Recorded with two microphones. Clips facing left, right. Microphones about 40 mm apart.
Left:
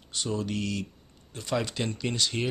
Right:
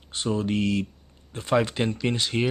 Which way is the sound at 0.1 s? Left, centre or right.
Right.